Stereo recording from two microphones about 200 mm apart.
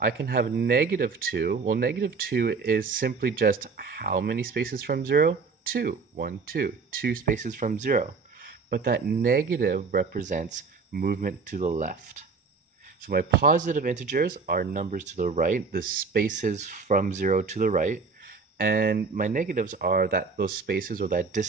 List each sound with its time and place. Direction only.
0.0 s speech: 50° right (ahead or behind)
8.6 s speech: 50° right (ahead or behind)